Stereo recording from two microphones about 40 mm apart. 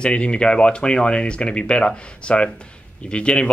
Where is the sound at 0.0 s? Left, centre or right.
Left.